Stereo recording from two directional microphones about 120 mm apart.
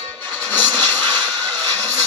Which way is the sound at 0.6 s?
15° left (ahead or behind).